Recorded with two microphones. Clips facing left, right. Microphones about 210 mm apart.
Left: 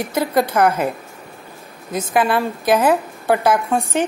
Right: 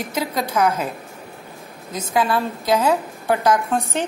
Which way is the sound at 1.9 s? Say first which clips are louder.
Left 3 dB; 15° left (ahead or behind).